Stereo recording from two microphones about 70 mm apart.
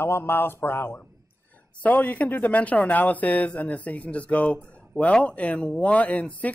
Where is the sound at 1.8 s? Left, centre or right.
Left.